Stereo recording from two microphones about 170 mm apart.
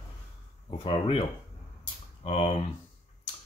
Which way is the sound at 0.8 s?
30° left (ahead or behind).